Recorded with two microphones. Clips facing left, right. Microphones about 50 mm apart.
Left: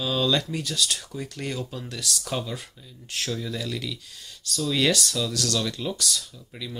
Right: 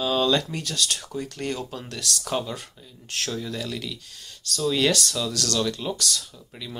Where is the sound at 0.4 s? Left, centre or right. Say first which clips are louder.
Even; centre.